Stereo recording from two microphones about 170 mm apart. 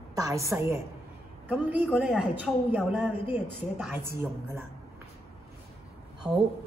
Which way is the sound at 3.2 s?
10° right (ahead or behind).